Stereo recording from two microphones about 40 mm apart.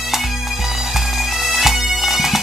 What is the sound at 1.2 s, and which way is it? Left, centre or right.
Bagpipes, centre.